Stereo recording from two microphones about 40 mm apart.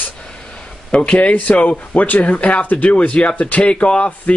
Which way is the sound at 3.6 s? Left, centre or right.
Left.